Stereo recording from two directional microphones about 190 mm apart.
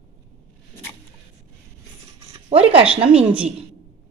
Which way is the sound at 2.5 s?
30° right (ahead or behind).